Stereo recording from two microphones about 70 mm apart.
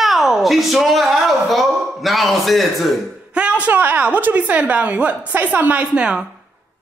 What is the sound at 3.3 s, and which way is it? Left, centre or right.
A woman's voice, centre.